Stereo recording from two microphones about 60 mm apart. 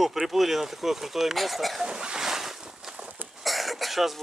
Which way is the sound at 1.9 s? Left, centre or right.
Centre.